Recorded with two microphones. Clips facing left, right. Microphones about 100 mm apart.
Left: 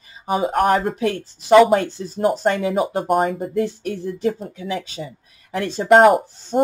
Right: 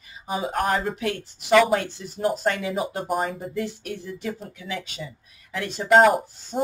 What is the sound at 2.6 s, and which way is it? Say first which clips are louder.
Speech: left 7 dB; 45° left (ahead or behind).